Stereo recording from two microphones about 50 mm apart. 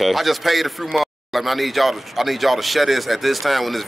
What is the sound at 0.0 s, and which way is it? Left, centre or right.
A man's voice, centre.